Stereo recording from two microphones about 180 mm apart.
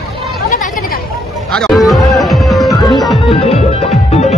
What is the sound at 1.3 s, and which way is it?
Music, centre (ahead or behind).